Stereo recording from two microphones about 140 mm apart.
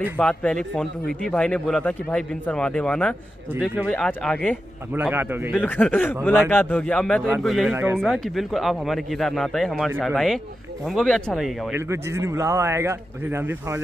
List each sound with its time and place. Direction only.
0.2 s a man's voice: 5° left (ahead or behind)
4.9 s a man's voice: 15° right (ahead or behind)
5.5 s a man's voice: 10° left (ahead or behind)
7.7 s a man's voice: 15° right (ahead or behind)
8.0 s speech: centre (ahead or behind)
11.7 s speech: 20° right (ahead or behind)